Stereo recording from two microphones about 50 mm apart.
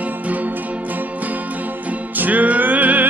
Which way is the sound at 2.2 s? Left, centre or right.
Right.